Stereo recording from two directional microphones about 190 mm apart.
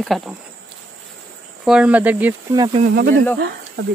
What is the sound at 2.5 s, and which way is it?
Speech, 20° right (ahead or behind).